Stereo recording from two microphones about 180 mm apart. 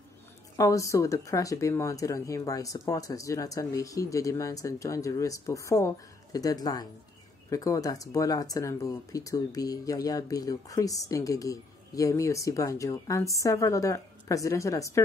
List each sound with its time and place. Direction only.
0.6 s speech: 15° left (ahead or behind)